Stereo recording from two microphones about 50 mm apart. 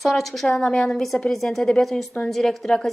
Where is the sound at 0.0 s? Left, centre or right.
Centre.